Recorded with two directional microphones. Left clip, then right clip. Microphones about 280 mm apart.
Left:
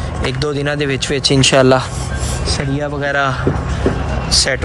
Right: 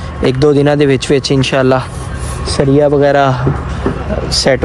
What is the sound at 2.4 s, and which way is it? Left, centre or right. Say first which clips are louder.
Speech: right 11 dB; centre.